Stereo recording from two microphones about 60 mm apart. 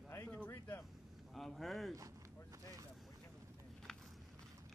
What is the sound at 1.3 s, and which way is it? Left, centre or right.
Speech, centre.